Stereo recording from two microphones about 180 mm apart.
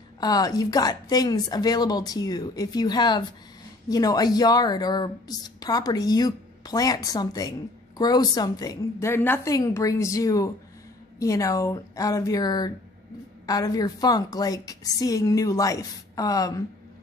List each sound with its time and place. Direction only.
0.2 s a woman's voice: 20° left (ahead or behind)